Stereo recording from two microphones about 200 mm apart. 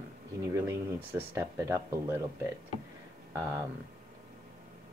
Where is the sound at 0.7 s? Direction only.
15° right (ahead or behind).